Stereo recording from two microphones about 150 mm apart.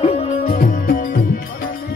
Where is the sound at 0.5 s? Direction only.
90° left.